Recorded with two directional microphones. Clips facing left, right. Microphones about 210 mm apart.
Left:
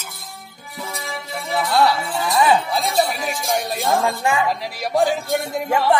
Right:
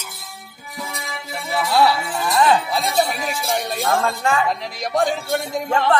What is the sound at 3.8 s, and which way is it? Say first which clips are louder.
A man's voice: left 1 dB; 15° left (ahead or behind).